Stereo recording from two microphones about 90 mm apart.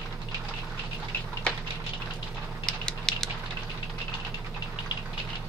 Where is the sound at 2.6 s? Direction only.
5° left (ahead or behind).